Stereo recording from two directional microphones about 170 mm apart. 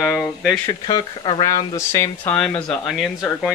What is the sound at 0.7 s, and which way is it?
Speech, 25° left (ahead or behind).